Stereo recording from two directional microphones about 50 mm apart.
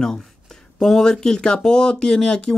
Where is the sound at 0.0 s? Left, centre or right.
Centre.